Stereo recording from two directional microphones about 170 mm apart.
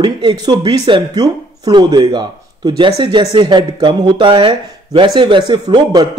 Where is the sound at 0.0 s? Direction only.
25° right (ahead or behind).